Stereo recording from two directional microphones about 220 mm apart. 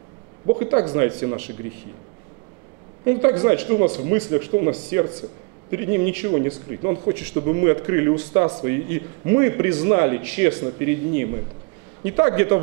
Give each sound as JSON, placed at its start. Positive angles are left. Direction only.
{"t": 0.6, "sound": "speech", "side_deg": -15}
{"t": 3.1, "sound": "speech", "side_deg": -15}